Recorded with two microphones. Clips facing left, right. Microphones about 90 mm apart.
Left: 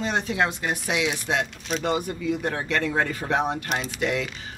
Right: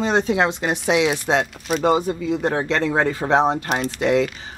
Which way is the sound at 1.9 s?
25° right (ahead or behind).